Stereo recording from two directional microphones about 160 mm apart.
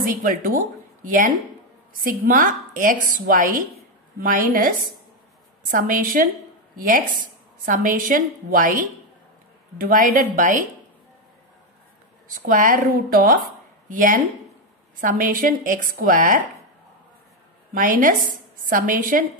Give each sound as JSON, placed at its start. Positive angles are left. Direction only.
{"t": 0.0, "sound": "a woman's voice", "side_deg": -60}
{"t": 12.3, "sound": "a woman's voice", "side_deg": -60}
{"t": 17.7, "sound": "a woman's voice", "side_deg": -60}